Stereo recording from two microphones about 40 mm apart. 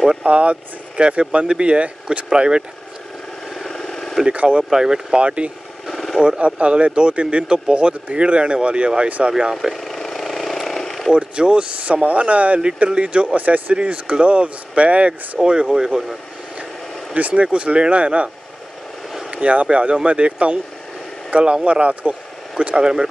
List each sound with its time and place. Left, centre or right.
0.2 s speech: right
3.4 s vehicle: centre
4.3 s speech: right
4.6 s speech: centre
5.2 s speech: right
5.9 s vehicle: centre
6.2 s speech: right
9.6 s vehicle: centre
11.1 s speech: right
11.9 s speech: right; by 16.0 s centre
17.1 s speech: right
19.3 s speech: right